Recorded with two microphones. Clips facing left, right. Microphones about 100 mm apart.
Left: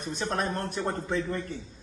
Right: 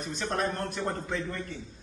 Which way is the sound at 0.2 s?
5° left (ahead or behind).